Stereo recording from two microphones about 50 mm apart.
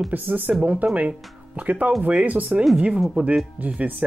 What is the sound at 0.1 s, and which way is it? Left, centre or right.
Speech, right.